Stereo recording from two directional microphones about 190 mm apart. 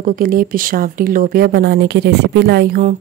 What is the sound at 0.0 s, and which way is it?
Speech, 50° right (ahead or behind).